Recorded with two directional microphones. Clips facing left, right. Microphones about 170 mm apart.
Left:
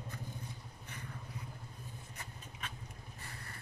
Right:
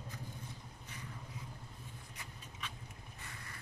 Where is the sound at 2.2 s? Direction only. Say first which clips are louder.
Left 1 dB; 50° left (ahead or behind).